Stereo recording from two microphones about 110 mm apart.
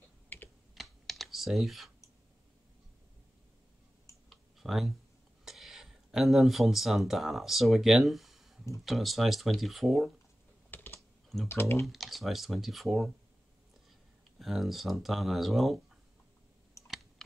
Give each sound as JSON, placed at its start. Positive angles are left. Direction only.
{"t": 0.7, "sound": "computer keyboard", "side_deg": 0}
{"t": 4.3, "sound": "clicking", "side_deg": 0}
{"t": 5.4, "sound": "speech", "side_deg": -5}
{"t": 10.7, "sound": "typing", "side_deg": 20}
{"t": 11.8, "sound": "speech", "side_deg": 0}
{"t": 14.4, "sound": "speech", "side_deg": 0}